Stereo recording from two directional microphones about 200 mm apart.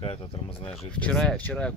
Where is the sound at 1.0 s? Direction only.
5° left (ahead or behind).